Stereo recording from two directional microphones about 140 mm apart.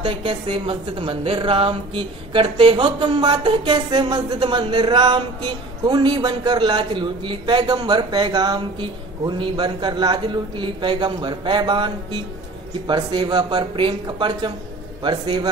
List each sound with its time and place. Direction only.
0.0 s a man's voice: 40° right (ahead or behind)